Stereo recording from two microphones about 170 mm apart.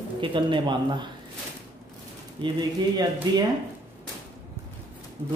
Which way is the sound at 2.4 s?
25° right (ahead or behind).